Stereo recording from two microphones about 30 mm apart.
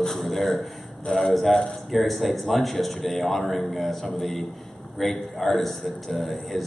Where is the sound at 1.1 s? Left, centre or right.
Left.